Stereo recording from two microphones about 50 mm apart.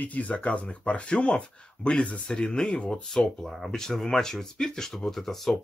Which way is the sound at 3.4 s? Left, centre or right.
Centre.